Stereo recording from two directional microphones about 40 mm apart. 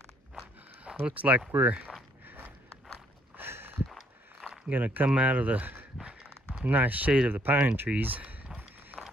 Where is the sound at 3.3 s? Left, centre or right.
Right.